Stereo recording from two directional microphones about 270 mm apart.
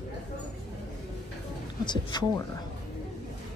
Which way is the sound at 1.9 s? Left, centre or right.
Centre.